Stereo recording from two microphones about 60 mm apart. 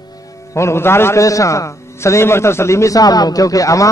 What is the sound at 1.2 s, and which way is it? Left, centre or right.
A man's voice, left.